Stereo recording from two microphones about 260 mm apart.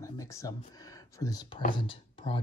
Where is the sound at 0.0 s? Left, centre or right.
Centre.